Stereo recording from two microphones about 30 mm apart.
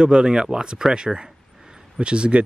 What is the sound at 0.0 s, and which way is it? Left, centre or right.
Speech, right.